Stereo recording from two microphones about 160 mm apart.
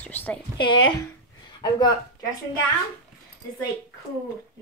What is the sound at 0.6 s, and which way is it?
Speech, 30° left (ahead or behind).